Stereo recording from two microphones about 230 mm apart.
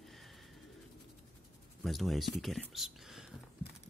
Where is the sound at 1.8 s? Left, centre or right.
Centre.